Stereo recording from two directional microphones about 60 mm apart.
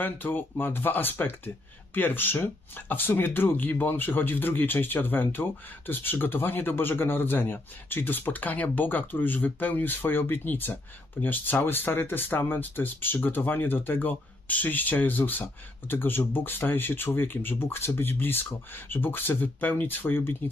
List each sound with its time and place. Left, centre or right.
0.0 s speech: left